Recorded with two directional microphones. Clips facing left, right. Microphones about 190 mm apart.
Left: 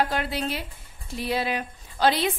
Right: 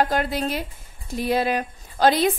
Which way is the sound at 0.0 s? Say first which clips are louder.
Right 4 dB; 45° right (ahead or behind).